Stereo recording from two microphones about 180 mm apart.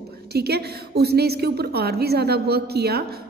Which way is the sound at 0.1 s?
60° right (ahead or behind).